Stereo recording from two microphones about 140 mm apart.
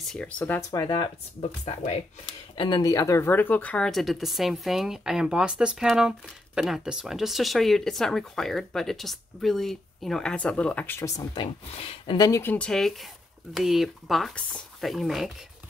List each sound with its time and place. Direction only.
0.1 s speech: 10° left (ahead or behind)
0.6 s speech: 25° left (ahead or behind); by 15.3 s centre (ahead or behind)